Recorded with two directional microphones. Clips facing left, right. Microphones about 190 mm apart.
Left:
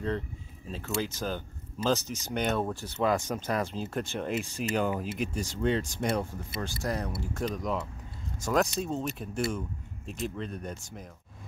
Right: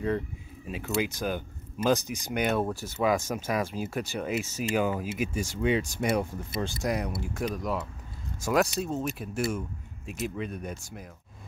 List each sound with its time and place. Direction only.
0.7 s speech: 10° right (ahead or behind)
6.6 s speech: 20° right (ahead or behind)